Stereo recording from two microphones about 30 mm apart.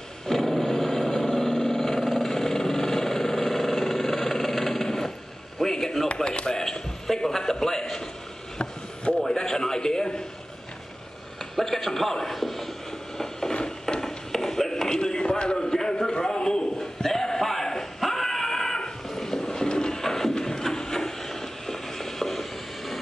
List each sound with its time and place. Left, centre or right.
0.3 s vehicle: centre
5.6 s a sound: centre
6.1 s a man's voice: left
6.6 s a man's voice: centre
9.3 s a man's voice: left
11.5 s a sound: centre
13.5 s mechanisms: left
14.0 s a sound: centre
19.0 s vehicle: centre
20.0 s music: centre